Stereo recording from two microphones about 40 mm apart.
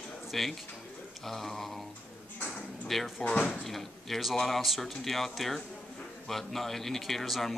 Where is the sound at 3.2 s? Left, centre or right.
Left.